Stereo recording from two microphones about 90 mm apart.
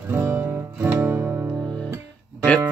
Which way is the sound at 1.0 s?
15° right (ahead or behind).